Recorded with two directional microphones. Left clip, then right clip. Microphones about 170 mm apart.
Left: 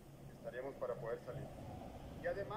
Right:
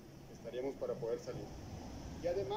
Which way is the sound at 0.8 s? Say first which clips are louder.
Right 1 dB; 20° right (ahead or behind).